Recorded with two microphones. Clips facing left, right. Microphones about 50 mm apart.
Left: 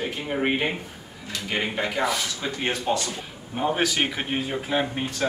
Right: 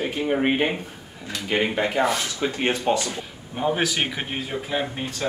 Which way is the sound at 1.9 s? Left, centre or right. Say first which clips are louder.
Right 3 dB; centre.